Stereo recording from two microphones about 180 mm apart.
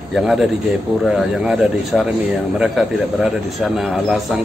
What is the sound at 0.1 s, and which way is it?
A man's voice, centre (ahead or behind).